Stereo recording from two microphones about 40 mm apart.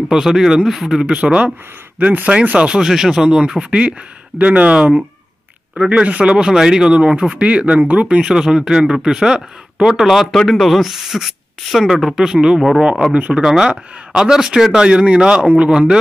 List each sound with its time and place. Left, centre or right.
0.1 s speech: centre
2.0 s speech: right
2.6 s speech: right
2.9 s speech: centre
3.3 s speech: right
4.4 s speech: right
5.9 s speech: right
7.0 s speech: right
8.2 s speech: centre
10.3 s speech: centre
10.8 s speech: centre
12.5 s speech: centre
13.1 s speech: right
13.4 s speech: centre; by 15.7 s right